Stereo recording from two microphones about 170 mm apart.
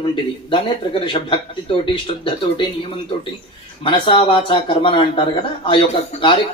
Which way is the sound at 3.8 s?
30° left (ahead or behind).